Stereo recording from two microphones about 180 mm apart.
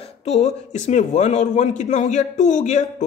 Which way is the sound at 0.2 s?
40° left (ahead or behind).